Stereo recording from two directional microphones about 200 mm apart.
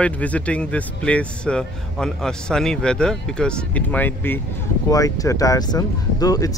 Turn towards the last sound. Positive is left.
turn(degrees=20)  # may be behind; listen again after turning